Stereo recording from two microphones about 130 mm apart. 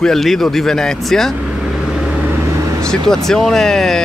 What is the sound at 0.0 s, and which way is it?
Speech, centre (ahead or behind).